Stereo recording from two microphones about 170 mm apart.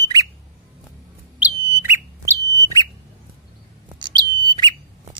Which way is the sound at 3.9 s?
25° right (ahead or behind).